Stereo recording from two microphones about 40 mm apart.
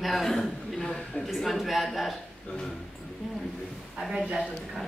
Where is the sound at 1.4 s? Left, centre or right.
Centre.